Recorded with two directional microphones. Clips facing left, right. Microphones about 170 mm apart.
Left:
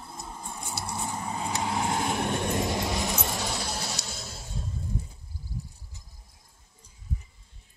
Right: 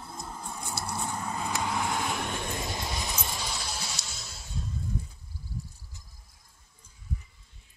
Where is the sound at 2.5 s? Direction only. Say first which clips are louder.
Left 7 dB; 75° left (ahead or behind).